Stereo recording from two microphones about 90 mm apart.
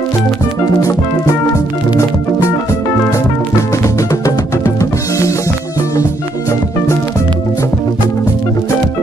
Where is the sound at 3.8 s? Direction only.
35° left (ahead or behind).